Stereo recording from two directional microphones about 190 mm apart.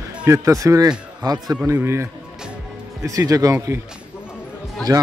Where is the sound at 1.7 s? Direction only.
15° right (ahead or behind).